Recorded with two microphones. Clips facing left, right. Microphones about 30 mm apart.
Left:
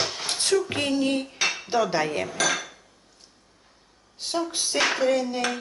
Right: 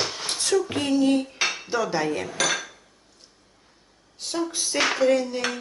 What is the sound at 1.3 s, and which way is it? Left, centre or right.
Cutlery, centre.